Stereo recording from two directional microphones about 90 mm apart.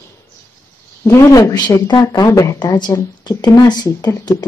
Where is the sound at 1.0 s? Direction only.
40° left (ahead or behind).